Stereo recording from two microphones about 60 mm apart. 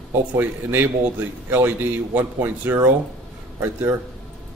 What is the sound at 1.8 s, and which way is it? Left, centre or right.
Speech, right.